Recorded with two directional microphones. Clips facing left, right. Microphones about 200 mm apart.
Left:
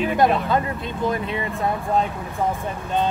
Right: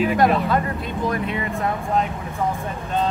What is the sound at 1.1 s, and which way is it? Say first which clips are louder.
Speech: right 1 dB; 30° left (ahead or behind).